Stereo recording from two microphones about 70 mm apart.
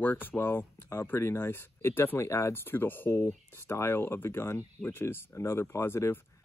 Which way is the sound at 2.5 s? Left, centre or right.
Left.